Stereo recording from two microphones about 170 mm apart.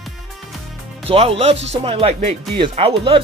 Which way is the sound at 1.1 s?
35° right (ahead or behind).